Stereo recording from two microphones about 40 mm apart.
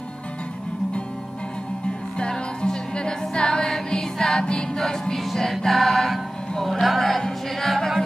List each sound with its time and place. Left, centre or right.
2.1 s music: left
4.7 s music: centre
5.7 s choir: centre
6.5 s a sound: centre